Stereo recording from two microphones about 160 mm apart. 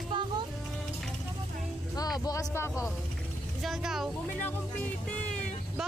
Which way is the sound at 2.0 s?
25° left (ahead or behind).